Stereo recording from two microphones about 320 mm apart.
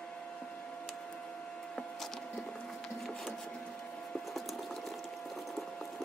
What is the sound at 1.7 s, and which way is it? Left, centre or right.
Wood, centre.